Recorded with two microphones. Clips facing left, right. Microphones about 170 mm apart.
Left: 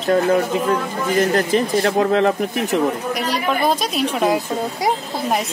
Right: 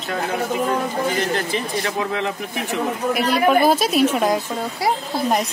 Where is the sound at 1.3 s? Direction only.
40° left (ahead or behind).